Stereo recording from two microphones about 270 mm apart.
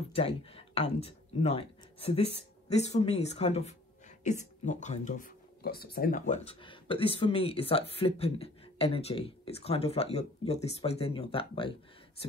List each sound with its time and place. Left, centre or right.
0.1 s speech: left